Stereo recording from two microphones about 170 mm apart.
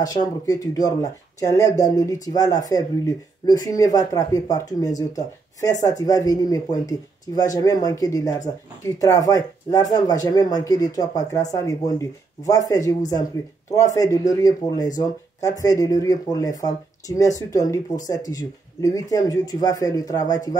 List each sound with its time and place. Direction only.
0.0 s speech: 25° left (ahead or behind)
13.9 s speech: 20° left (ahead or behind)